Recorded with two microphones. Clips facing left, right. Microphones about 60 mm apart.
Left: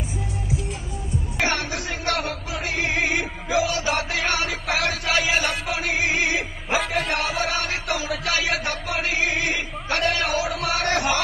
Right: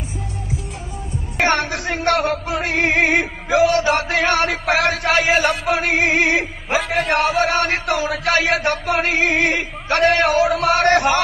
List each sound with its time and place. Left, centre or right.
1.4 s music: right
6.9 s speech: right